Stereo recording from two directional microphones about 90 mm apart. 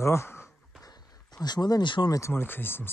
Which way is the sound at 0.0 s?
30° left (ahead or behind).